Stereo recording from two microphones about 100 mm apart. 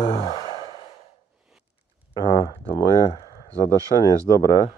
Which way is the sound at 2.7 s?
45° left (ahead or behind).